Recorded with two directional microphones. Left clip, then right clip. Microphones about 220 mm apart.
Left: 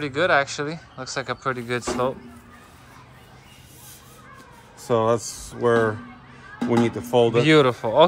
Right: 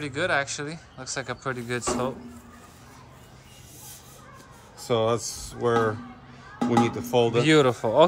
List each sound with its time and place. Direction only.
0.0 s speech: centre (ahead or behind)
4.7 s speech: 30° left (ahead or behind)
5.2 s speech: centre (ahead or behind)
5.6 s speech: 25° left (ahead or behind)
7.3 s speech: 5° right (ahead or behind)